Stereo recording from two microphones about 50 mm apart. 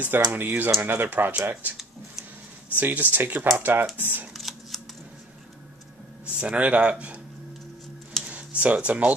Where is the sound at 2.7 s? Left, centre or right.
Right.